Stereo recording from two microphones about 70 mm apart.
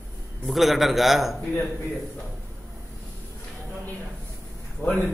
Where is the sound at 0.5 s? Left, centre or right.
Centre.